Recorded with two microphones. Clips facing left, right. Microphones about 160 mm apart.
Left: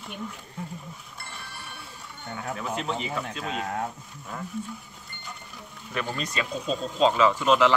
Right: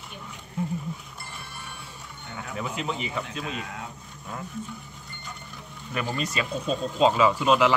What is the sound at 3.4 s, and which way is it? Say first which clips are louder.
Speech: left 5 dB; 45° left (ahead or behind).